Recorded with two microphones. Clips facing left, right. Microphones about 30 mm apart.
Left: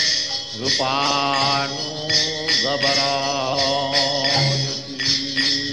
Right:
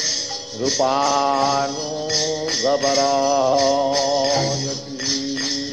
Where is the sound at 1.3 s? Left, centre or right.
Left.